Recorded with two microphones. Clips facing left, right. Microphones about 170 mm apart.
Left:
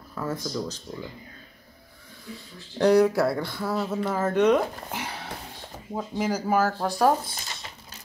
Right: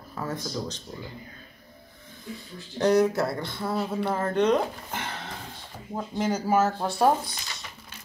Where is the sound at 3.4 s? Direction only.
25° right (ahead or behind).